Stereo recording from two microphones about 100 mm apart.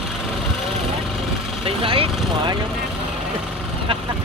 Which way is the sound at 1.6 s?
65° right (ahead or behind).